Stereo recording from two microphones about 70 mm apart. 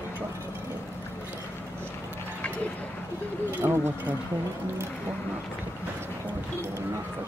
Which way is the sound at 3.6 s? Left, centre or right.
Right.